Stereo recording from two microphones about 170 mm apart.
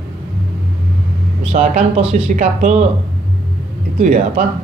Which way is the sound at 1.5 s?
40° right (ahead or behind).